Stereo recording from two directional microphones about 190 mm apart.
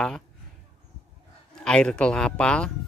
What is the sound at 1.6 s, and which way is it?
Speech, 5° left (ahead or behind).